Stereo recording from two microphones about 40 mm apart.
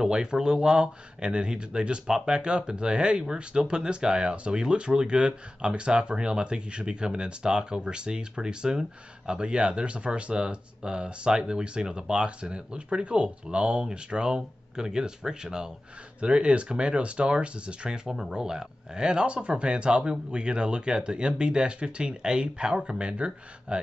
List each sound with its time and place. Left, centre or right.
0.0 s speech: centre